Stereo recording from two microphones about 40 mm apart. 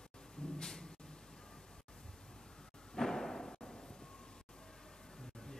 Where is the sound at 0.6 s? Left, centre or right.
Centre.